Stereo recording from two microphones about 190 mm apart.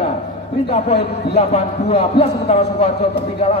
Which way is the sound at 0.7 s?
35° left (ahead or behind).